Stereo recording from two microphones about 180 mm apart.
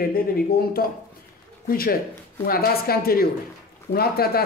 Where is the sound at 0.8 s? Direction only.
60° left (ahead or behind).